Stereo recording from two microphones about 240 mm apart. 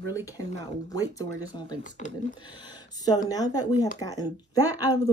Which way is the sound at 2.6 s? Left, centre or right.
Centre.